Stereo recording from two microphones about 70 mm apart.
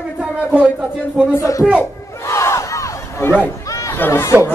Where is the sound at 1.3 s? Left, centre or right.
Left.